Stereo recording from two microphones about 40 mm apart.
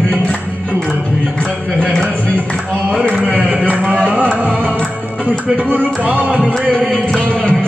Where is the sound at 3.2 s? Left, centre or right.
Right.